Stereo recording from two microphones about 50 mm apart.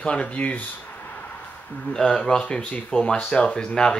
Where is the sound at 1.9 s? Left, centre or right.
Centre.